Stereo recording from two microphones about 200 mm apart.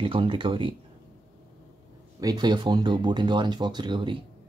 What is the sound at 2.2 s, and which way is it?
Speech, 20° right (ahead or behind).